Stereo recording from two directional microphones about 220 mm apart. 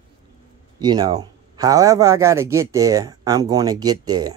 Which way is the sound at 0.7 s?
20° right (ahead or behind).